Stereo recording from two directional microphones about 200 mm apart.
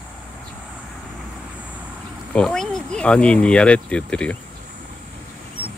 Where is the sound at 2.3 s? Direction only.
5° left (ahead or behind).